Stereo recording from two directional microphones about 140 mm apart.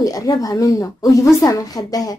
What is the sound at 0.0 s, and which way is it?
Speech, 25° left (ahead or behind).